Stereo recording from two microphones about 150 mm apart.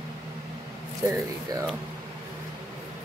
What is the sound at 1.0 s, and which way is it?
Speech, 20° right (ahead or behind).